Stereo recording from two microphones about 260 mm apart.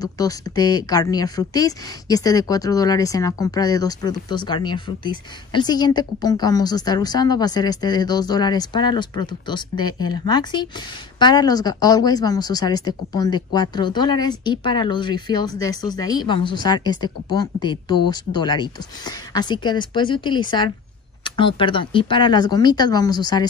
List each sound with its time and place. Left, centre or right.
0.0 s speech: centre